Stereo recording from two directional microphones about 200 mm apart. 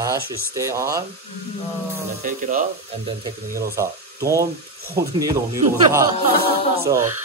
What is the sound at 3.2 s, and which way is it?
Speech, 15° right (ahead or behind).